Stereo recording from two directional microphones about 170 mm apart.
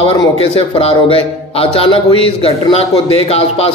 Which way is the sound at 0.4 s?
35° left (ahead or behind).